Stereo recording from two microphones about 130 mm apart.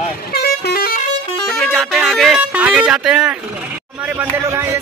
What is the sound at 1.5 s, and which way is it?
Speech, centre (ahead or behind).